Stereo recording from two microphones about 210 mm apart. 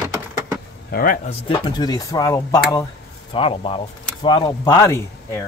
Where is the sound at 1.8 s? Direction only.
20° left (ahead or behind).